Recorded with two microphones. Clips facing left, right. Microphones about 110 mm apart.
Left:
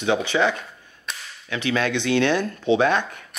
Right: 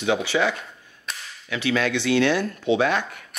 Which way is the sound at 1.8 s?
20° left (ahead or behind).